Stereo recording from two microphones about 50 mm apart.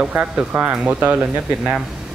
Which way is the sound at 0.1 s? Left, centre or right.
Right.